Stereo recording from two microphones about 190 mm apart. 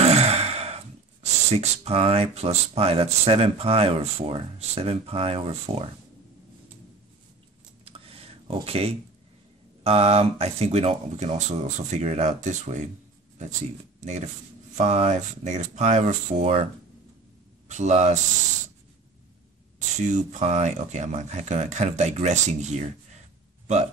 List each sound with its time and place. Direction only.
0.0 s speech: 35° right (ahead or behind)
7.8 s a sound: 30° right (ahead or behind)
9.8 s speech: 30° right (ahead or behind)
14.8 s speech: 35° right (ahead or behind)
17.6 s speech: 40° right (ahead or behind)
20.0 s speech: 40° right (ahead or behind)